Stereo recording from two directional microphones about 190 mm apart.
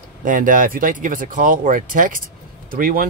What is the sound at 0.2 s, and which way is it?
Speech, 45° right (ahead or behind).